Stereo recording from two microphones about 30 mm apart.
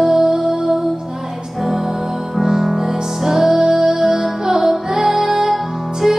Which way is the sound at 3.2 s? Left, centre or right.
Centre.